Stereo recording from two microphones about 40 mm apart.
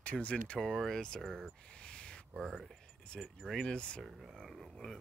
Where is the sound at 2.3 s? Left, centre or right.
Centre.